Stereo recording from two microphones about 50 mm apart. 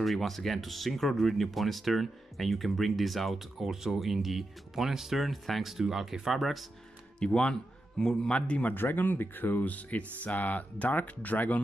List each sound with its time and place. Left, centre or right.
0.0 s speech: centre
7.2 s a man's voice: centre
8.7 s speech: left